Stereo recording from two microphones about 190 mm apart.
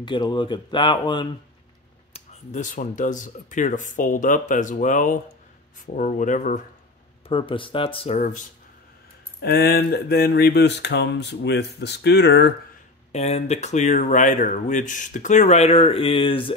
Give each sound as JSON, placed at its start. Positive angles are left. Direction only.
{"t": 0.0, "sound": "speech", "side_deg": 25}
{"t": 2.1, "sound": "speech", "side_deg": 40}
{"t": 7.2, "sound": "speech", "side_deg": 30}
{"t": 9.4, "sound": "a sound", "side_deg": 55}
{"t": 13.1, "sound": "speech", "side_deg": 35}